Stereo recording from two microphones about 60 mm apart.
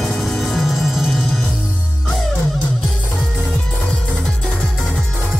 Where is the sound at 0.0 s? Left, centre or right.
Centre.